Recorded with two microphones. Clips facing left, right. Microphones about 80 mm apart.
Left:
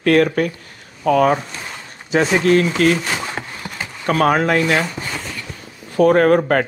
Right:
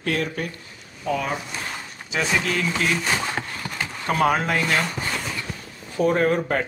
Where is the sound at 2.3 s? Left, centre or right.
Left.